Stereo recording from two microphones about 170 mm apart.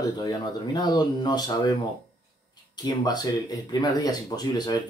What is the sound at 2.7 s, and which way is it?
Speech, 25° left (ahead or behind).